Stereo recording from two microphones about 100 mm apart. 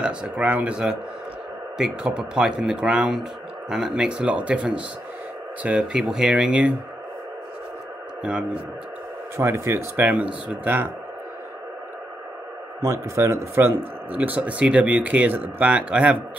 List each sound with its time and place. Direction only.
0.0 s a man's voice: 10° right (ahead or behind)
8.2 s speech: 5° right (ahead or behind)
9.4 s speech: 25° right (ahead or behind)
12.8 s a man's voice: 30° right (ahead or behind); by 16.2 s 10° right (ahead or behind)